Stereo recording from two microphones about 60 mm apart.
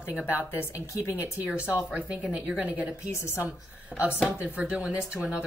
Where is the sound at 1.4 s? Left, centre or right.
Right.